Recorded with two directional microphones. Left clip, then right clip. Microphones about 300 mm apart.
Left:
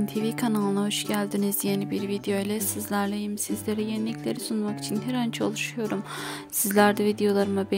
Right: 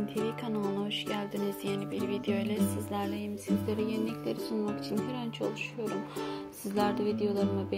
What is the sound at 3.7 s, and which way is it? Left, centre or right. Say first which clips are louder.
Speech: left 5 dB; left.